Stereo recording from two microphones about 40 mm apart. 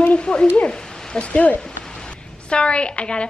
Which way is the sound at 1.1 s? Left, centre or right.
Left.